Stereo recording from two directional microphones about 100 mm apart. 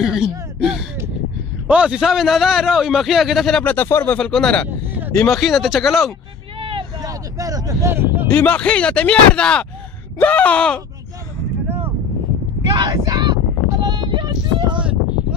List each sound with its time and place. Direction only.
0.0 s a sound: 5° right (ahead or behind)
1.7 s a man's voice: 10° right (ahead or behind)
3.6 s speech: 20° left (ahead or behind)
4.2 s a man's voice: 10° left (ahead or behind)
6.6 s vehicle: 60° right (ahead or behind)
7.0 s speech: 35° right (ahead or behind)
7.9 s speech: 20° right (ahead or behind)
8.3 s speech: 15° left (ahead or behind)
12.8 s a sound: 40° right (ahead or behind)